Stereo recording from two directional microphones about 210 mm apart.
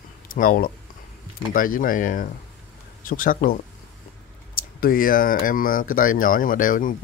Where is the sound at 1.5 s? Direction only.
40° left (ahead or behind).